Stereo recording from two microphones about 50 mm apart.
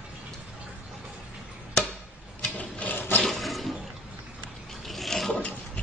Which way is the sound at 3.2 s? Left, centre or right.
Centre.